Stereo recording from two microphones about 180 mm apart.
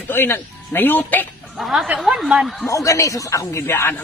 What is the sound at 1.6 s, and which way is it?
Speech, centre (ahead or behind).